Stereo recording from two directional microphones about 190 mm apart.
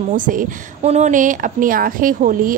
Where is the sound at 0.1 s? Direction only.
45° right (ahead or behind).